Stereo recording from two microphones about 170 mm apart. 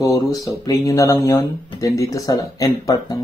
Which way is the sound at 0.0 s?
20° left (ahead or behind).